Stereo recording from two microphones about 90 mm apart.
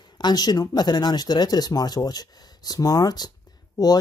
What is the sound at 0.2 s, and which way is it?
Speech, 50° left (ahead or behind).